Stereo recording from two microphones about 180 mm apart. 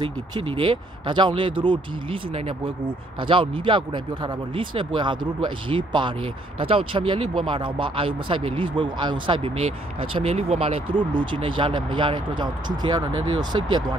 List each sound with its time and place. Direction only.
0.0 s speech: 30° right (ahead or behind)